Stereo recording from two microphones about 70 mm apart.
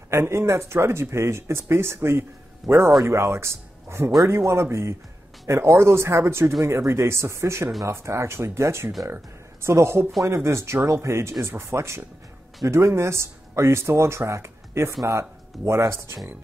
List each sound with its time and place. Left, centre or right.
0.1 s speech: right